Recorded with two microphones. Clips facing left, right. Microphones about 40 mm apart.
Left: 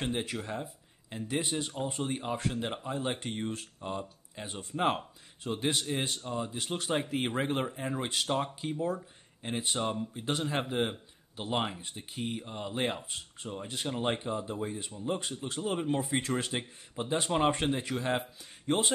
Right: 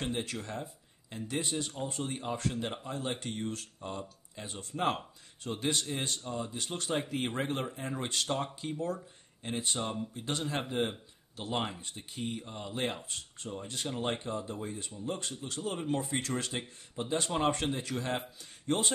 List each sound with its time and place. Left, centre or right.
0.0 s speech: centre